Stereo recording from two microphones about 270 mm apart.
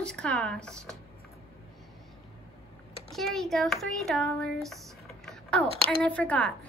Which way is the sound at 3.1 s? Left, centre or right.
Centre.